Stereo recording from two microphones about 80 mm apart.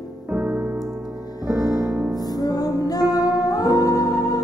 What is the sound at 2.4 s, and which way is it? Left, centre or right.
Music, left.